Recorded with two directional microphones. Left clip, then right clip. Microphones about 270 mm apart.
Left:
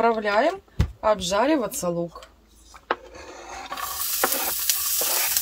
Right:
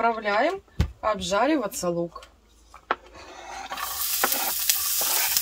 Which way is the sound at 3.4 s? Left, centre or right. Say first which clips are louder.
Even; centre.